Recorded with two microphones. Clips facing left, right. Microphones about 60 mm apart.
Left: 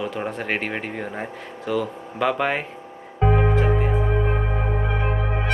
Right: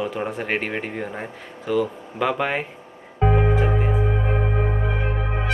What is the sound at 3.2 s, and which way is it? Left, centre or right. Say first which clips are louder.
Music: even; centre.